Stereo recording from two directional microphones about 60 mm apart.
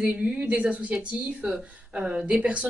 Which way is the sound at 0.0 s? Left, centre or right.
Centre.